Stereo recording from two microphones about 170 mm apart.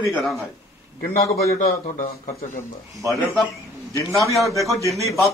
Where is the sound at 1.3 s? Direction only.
65° left (ahead or behind).